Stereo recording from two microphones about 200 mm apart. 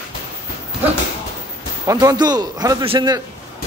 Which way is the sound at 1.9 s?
20° right (ahead or behind).